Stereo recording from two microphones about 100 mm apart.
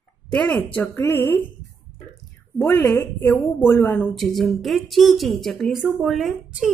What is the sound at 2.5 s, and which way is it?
A woman's voice, 25° left (ahead or behind).